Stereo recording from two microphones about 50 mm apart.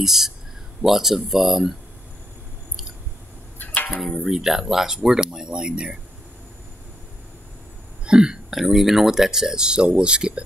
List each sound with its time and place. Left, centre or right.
0.0 s speech: centre
3.5 s a sound: left
4.0 s speech: centre
8.0 s burping: centre
8.5 s speech: centre